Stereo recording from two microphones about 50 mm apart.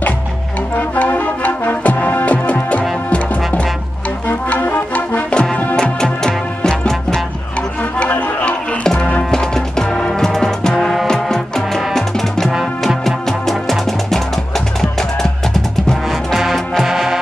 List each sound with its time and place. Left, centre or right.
0.7 s music: left
4.6 s music: left
5.3 s music: centre
8.1 s music: left
8.8 s music: centre